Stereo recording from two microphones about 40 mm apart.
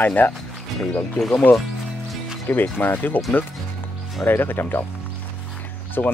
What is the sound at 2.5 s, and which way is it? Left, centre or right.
Speech, left.